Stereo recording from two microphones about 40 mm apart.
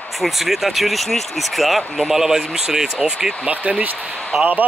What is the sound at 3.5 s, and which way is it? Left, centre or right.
Speech, right.